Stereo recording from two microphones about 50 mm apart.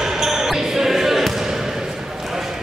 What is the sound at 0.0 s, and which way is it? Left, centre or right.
Basketball bounce, centre.